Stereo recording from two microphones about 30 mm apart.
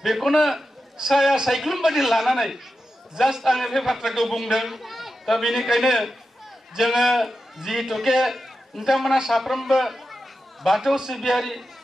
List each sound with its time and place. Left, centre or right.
0.0 s a man's voice: centre
1.0 s a man's voice: right
1.5 s a man's voice: centre
3.5 s a man's voice: centre